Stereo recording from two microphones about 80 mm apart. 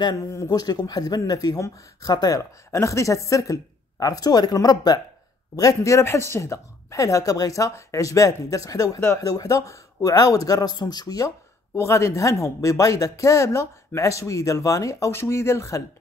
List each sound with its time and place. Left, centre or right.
0.5 s speech: left
5.6 s speech: left
11.7 s speech: left